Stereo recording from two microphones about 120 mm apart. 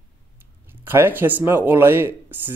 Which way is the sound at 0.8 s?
20° right (ahead or behind).